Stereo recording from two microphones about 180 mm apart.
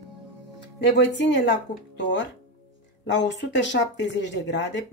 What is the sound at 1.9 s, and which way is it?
Speech, 80° left.